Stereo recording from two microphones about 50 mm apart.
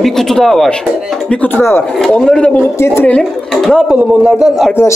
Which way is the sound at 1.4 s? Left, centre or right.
Left.